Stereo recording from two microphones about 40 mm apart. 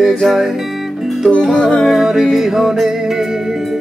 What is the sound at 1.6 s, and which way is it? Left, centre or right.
Music, centre.